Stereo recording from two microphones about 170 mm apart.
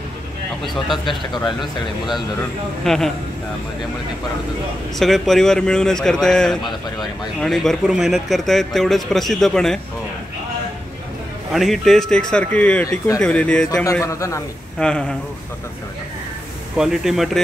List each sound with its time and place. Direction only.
1.0 s speech: 25° left (ahead or behind)
1.6 s speech: centre (ahead or behind)
4.9 s speech: centre (ahead or behind)
11.5 s speech: centre (ahead or behind)
13.8 s speech: 20° left (ahead or behind)
14.8 s speech: 5° left (ahead or behind)
16.7 s speech: 5° right (ahead or behind)